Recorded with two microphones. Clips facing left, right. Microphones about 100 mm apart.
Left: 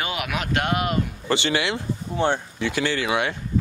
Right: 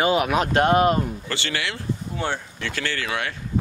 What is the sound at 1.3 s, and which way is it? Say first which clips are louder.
Speech: left 6 dB; 20° left (ahead or behind).